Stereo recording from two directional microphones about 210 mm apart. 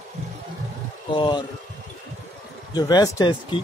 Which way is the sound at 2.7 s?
20° left (ahead or behind).